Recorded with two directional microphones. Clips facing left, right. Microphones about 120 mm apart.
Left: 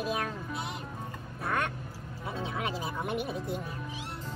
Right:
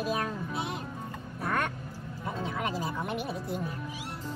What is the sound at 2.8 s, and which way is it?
Speech, 5° left (ahead or behind).